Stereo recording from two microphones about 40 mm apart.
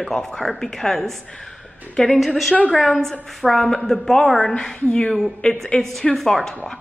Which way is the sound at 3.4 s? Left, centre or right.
Centre.